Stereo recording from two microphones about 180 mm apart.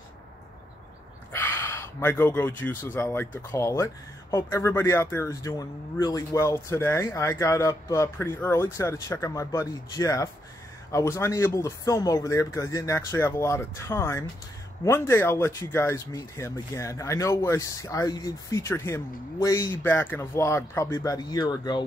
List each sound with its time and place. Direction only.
1.3 s speech: 10° left (ahead or behind)